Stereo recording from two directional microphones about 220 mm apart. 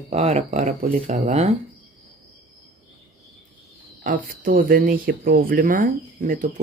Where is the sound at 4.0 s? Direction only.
35° right (ahead or behind).